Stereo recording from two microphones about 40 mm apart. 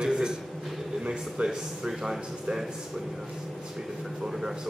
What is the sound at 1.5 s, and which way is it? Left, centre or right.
A man's voice, centre.